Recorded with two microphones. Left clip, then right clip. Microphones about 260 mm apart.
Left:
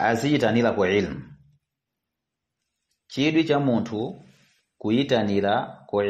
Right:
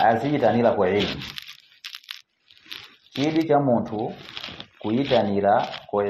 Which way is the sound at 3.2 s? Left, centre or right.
Left.